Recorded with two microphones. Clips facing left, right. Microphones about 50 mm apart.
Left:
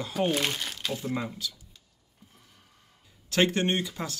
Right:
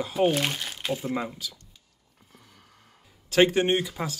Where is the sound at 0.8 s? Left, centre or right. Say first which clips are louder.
Right 5 dB; centre.